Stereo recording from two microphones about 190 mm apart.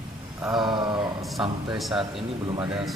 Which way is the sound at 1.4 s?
5° right (ahead or behind).